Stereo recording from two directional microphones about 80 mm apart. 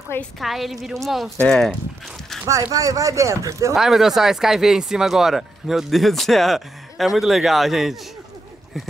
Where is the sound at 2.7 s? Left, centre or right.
Right.